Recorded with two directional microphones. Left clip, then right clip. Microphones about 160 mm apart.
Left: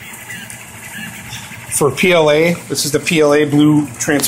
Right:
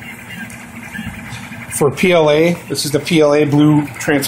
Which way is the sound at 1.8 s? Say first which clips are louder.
Even; 5° right (ahead or behind).